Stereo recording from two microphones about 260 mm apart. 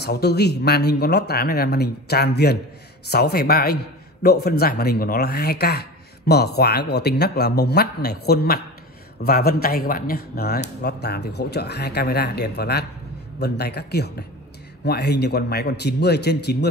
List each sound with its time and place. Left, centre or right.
0.0 s a man's voice: left